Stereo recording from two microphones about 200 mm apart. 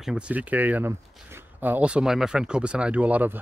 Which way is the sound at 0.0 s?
5° right (ahead or behind).